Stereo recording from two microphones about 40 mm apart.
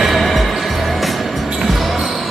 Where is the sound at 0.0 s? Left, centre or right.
Centre.